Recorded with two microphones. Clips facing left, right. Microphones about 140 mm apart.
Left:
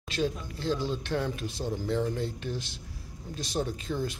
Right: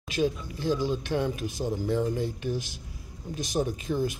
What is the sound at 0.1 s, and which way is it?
Speech, 10° right (ahead or behind).